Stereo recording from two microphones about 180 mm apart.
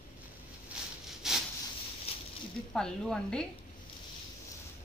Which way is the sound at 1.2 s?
Centre (ahead or behind).